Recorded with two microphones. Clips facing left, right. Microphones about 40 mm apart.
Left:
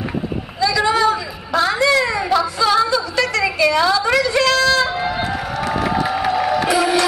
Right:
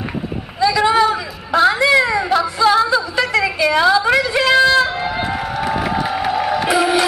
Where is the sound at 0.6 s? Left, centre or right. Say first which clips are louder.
Right 3 dB; centre.